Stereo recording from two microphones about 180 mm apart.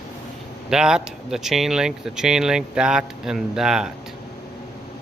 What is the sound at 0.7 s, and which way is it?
Speech, 5° right (ahead or behind).